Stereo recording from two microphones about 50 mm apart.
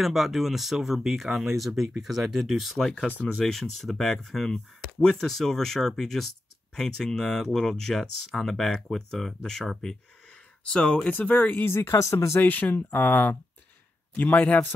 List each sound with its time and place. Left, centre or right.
0.0 s speech: centre
10.6 s speech: centre
11.1 s speech: left
11.6 s speech: left
12.4 s speech: left